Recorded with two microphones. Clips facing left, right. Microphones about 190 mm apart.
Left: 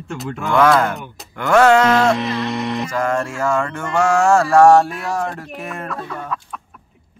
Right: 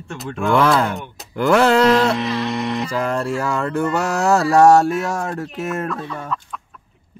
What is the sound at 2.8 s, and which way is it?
Speech, 35° right (ahead or behind).